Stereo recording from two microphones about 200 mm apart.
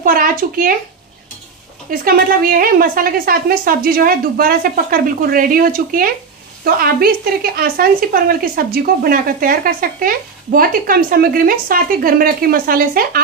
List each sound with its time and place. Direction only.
0.0 s speech: 45° right (ahead or behind)
1.9 s speech: 45° right (ahead or behind)